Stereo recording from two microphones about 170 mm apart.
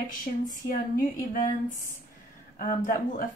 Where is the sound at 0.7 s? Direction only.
55° left (ahead or behind).